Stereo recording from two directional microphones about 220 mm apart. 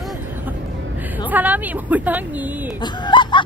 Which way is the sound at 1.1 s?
5° right (ahead or behind).